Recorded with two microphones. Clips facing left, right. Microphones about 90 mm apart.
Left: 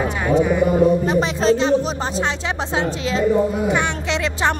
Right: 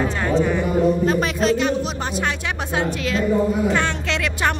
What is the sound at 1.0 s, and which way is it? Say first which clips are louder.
Speech: left 2 dB; 25° left (ahead or behind).